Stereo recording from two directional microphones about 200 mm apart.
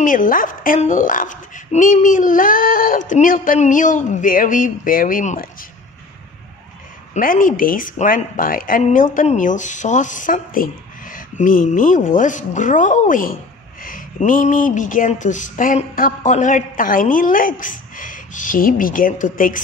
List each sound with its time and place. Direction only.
0.0 s a woman's voice: 40° left (ahead or behind)
7.2 s a woman's voice: 45° left (ahead or behind)